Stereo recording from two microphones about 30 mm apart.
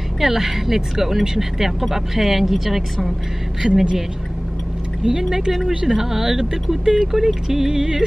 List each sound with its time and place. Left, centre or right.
0.2 s speech: centre
3.6 s a woman's voice: right
5.0 s speech: centre
7.0 s speech: centre